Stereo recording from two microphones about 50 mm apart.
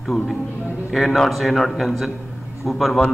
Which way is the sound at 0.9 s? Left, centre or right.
Centre.